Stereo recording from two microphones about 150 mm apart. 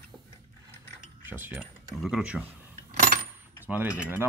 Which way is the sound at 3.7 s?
10° right (ahead or behind).